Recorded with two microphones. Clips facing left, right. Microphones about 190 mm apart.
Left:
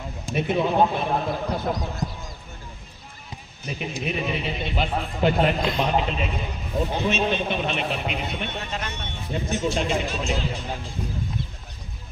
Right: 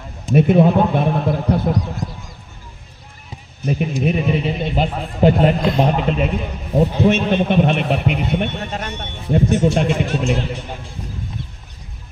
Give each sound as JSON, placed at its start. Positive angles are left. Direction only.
{"t": 0.4, "sound": "a man's voice", "side_deg": -55}
{"t": 3.6, "sound": "speech", "side_deg": -50}
{"t": 5.8, "sound": "a man's voice", "side_deg": -50}
{"t": 8.9, "sound": "a man's voice", "side_deg": -60}